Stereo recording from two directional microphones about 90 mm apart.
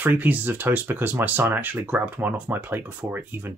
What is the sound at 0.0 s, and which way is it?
Speech, 20° right (ahead or behind).